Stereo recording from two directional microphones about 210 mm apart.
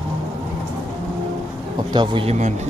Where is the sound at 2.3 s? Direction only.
35° right (ahead or behind).